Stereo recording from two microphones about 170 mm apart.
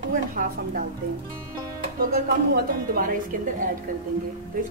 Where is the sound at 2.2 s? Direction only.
60° right (ahead or behind).